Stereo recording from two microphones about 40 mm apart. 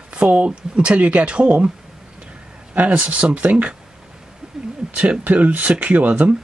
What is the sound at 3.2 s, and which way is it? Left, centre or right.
Speech, right.